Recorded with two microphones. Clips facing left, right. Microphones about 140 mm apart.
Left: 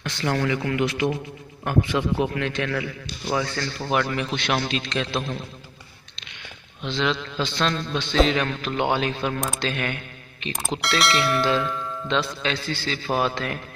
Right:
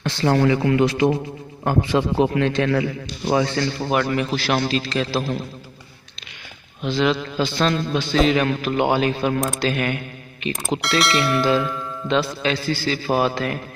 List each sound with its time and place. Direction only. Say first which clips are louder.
0.0 s speech: right 7 dB; 30° right (ahead or behind)
3.9 s a man's voice: right 2 dB; 5° right (ahead or behind)
6.8 s a man's voice: right 5 dB; 5° right (ahead or behind)